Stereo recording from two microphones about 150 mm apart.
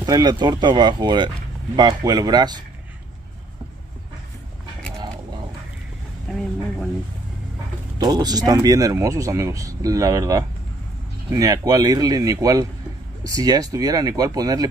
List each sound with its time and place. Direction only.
0.0 s speech: 30° right (ahead or behind)
8.0 s speech: 25° right (ahead or behind)